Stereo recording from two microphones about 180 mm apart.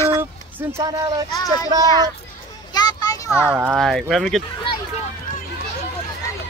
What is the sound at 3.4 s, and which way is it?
Speech, 10° right (ahead or behind).